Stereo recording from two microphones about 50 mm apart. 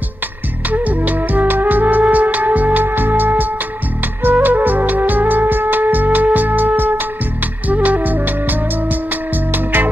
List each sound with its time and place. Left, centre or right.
0.7 s music: right